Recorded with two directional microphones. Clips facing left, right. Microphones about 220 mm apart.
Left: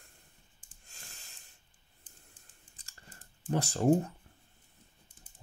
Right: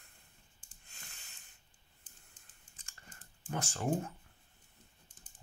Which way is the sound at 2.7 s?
35° left (ahead or behind).